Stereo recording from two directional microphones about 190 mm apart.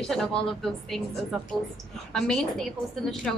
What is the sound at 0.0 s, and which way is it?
A woman's voice, 5° left (ahead or behind).